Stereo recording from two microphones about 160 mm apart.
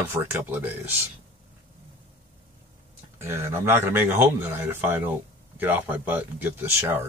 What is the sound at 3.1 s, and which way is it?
Speech, 15° right (ahead or behind).